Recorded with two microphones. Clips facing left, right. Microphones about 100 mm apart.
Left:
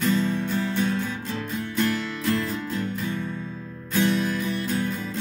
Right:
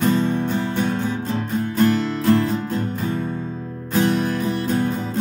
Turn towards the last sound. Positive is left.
turn(degrees=-40)  # may be behind; listen again after turning